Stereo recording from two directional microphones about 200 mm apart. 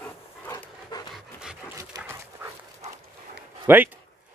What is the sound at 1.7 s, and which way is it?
Dog, 15° right (ahead or behind).